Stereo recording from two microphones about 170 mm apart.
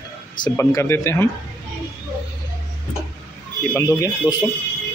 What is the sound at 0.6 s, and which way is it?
Speech, 15° left (ahead or behind).